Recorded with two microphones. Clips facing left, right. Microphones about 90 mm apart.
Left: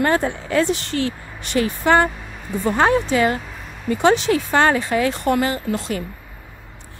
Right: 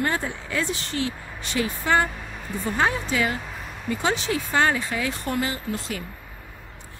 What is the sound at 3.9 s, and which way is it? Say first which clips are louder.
Speech: left 9 dB; 70° left (ahead or behind).